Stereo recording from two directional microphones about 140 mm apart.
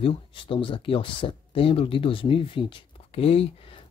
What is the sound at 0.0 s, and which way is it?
Speech, 40° left (ahead or behind).